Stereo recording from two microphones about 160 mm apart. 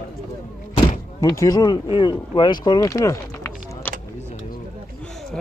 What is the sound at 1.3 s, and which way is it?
Speech, 20° left (ahead or behind).